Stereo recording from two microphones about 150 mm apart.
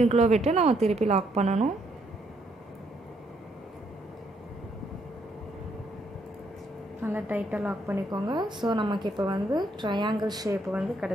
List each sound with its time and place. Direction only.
0.0 s a woman's voice: 45° right (ahead or behind)
7.0 s a woman's voice: 10° right (ahead or behind)
8.1 s a woman's voice: 30° right (ahead or behind)
10.7 s speech: 5° right (ahead or behind)